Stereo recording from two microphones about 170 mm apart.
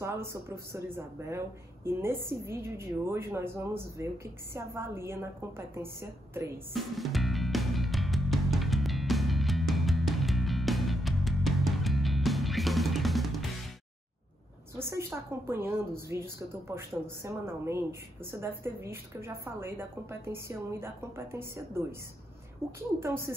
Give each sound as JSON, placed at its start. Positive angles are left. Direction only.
{"t": 0.0, "sound": "a woman's voice", "side_deg": -15}
{"t": 6.7, "sound": "music", "side_deg": 0}
{"t": 14.8, "sound": "a woman's voice", "side_deg": -15}